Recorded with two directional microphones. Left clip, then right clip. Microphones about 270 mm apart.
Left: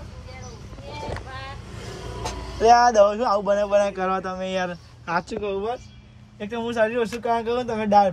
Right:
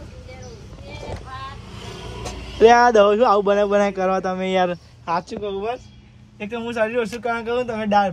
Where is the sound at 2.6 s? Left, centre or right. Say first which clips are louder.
Right 3 dB; right.